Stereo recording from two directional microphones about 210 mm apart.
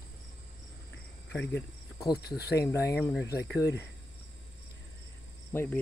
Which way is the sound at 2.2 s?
50° left (ahead or behind).